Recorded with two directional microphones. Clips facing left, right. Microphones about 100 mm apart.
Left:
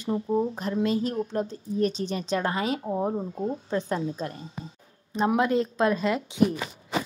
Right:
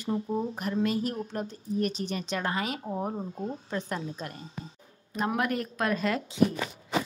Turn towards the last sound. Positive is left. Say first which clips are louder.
# left 2 dB
turn(degrees=25)  # may be behind; listen again after turning